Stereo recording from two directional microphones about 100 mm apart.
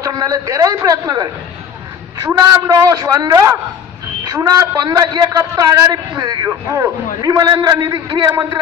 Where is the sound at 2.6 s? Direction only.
35° right (ahead or behind).